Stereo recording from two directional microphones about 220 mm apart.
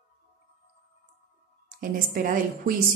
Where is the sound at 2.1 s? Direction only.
40° right (ahead or behind).